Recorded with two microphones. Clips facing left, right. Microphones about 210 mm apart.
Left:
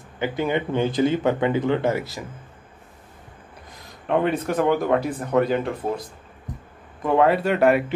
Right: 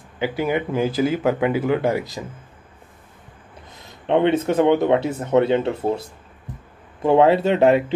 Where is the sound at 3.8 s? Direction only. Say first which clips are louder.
Right 4 dB; 25° right (ahead or behind).